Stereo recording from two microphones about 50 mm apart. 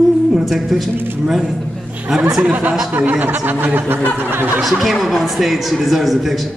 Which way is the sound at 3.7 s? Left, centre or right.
Right.